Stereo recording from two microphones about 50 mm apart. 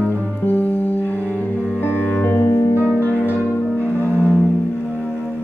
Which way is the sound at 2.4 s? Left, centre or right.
Left.